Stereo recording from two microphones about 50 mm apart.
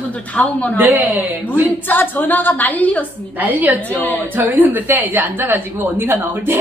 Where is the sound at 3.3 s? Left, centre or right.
Right.